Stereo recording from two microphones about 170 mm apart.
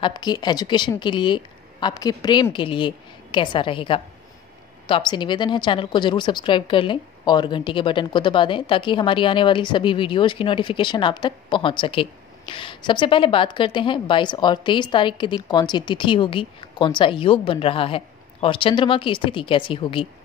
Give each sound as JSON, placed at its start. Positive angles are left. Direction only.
{"t": 0.0, "sound": "a woman's voice", "side_deg": 25}